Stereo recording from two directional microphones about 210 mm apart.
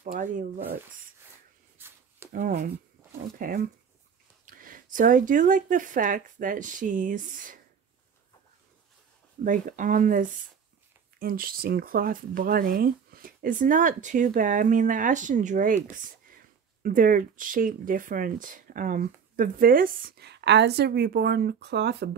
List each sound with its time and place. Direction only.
0.0 s speech: 40° right (ahead or behind)
1.8 s a sound: 10° right (ahead or behind)
2.3 s speech: 40° right (ahead or behind)
9.4 s a woman's voice: 40° right (ahead or behind)